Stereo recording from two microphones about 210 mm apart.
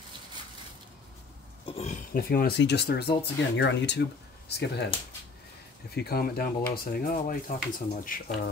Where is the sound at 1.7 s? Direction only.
30° left (ahead or behind).